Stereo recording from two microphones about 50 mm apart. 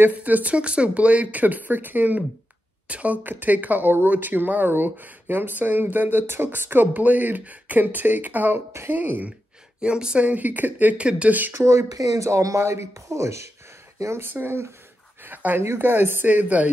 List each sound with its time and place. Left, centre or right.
0.1 s speech: right
6.9 s speech: right
9.8 s a woman's voice: centre
10.2 s speech: right
11.5 s speech: right
14.2 s speech: right